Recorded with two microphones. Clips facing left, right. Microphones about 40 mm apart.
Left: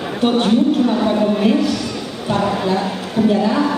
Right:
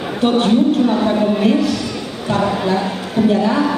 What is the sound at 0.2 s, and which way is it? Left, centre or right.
Speech, centre.